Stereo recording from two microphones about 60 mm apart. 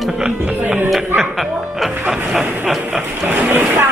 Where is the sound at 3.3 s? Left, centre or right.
Right.